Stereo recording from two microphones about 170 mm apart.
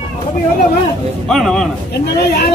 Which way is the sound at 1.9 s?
70° left (ahead or behind).